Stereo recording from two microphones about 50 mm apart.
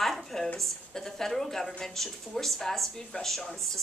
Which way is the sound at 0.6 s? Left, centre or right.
Centre.